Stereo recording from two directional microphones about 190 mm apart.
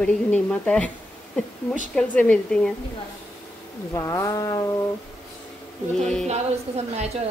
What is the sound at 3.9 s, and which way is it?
Speech, 15° left (ahead or behind).